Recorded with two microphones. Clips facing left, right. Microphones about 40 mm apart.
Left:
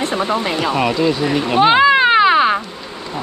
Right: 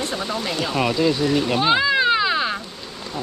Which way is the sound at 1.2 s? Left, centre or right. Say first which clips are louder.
Left 5 dB; left.